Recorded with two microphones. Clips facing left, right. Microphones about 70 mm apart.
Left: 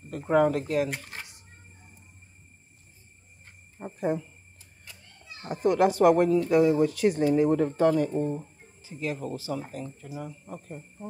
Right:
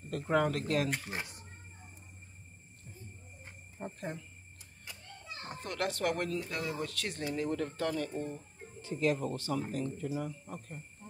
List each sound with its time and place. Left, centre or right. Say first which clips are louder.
0.1 s speech: left 7 dB; centre
3.8 s speech: left 12 dB; centre
5.4 s speech: left 14 dB; centre
8.8 s speech: right 1 dB; centre
11.0 s speech: left 12 dB; centre